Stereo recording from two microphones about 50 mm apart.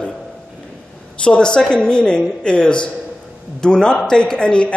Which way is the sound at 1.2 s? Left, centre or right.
Centre.